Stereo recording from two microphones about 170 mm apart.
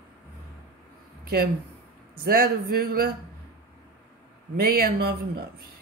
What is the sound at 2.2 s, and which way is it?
Speech, 60° right (ahead or behind).